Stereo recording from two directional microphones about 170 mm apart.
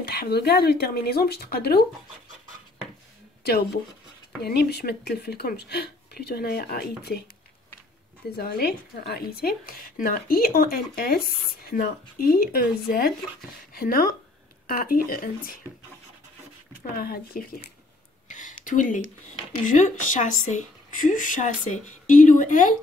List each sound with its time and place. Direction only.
0.0 s speech: 70° left (ahead or behind)
3.4 s speech: 70° left (ahead or behind)
8.4 s speech: 65° left (ahead or behind)
16.9 s speech: 60° left (ahead or behind)
18.3 s a sound: 50° left (ahead or behind)
19.6 s speech: 45° left (ahead or behind)